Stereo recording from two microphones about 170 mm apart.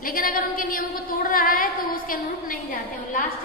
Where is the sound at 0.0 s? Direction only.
55° left (ahead or behind).